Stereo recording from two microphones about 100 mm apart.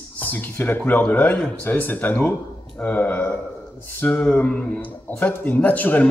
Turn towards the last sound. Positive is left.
turn(degrees=15)  # may be behind; listen again after turning